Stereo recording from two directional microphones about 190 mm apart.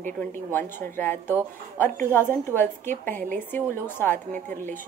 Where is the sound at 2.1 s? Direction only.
10° left (ahead or behind).